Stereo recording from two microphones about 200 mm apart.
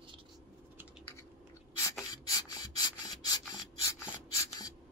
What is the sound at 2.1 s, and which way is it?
Filing, 20° left (ahead or behind).